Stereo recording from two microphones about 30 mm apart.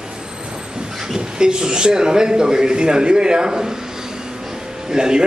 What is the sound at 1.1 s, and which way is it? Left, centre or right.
A man's voice, right.